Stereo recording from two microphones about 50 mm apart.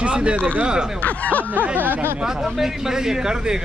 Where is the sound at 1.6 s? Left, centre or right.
Right.